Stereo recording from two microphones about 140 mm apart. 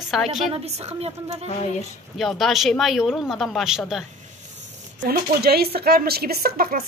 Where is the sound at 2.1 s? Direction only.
Centre (ahead or behind).